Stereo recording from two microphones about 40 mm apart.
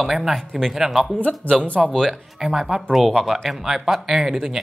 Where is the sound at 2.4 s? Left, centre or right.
Centre.